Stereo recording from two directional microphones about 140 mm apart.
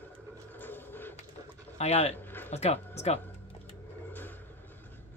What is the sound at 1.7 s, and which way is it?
Speech, 45° left (ahead or behind).